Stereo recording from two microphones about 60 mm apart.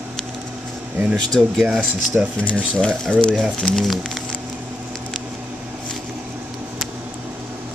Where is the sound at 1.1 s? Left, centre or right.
Centre.